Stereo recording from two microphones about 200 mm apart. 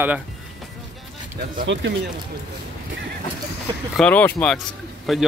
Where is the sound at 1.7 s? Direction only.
65° right (ahead or behind).